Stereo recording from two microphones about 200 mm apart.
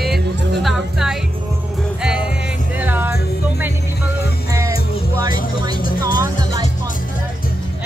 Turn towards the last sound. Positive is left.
turn(degrees=-20)  # may be behind; listen again after turning